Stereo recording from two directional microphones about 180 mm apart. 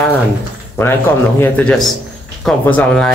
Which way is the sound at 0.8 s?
15° left (ahead or behind).